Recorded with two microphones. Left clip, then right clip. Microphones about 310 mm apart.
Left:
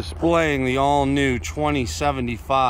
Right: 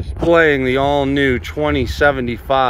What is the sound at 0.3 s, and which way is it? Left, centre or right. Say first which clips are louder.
Speech: right 8 dB; centre.